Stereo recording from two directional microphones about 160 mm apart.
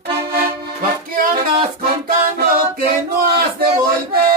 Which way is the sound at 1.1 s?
60° right (ahead or behind).